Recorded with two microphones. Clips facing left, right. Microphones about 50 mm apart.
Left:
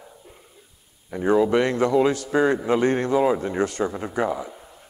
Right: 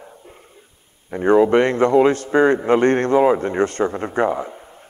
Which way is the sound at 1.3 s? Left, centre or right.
Right.